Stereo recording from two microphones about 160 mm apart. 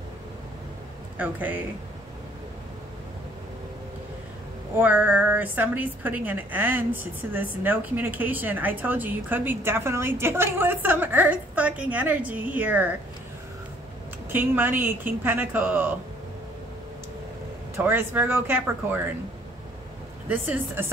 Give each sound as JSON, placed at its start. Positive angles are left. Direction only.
{"t": 1.1, "sound": "a woman's voice", "side_deg": -10}
{"t": 4.7, "sound": "a woman's voice", "side_deg": -10}
{"t": 14.3, "sound": "a woman's voice", "side_deg": -10}
{"t": 17.7, "sound": "a woman's voice", "side_deg": -15}
{"t": 20.2, "sound": "a woman's voice", "side_deg": -10}